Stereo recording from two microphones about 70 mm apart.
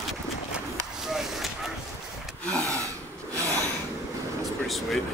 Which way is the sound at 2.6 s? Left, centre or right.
Right.